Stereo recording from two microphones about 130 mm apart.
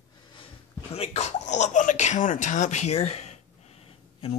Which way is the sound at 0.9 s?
55° left (ahead or behind).